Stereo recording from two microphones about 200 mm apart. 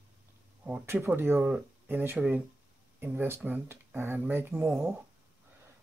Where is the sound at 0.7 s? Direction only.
5° right (ahead or behind).